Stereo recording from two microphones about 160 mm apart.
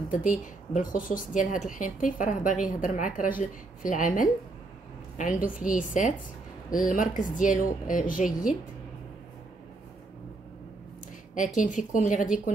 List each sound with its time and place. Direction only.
0.1 s speech: 55° left (ahead or behind)
11.3 s speech: 55° left (ahead or behind)